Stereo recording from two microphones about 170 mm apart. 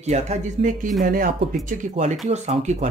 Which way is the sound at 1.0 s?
55° right (ahead or behind).